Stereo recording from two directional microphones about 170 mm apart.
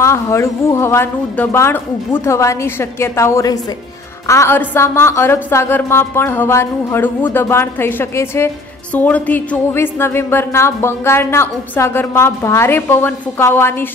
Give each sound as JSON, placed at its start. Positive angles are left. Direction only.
{"t": 0.0, "sound": "speech", "side_deg": 15}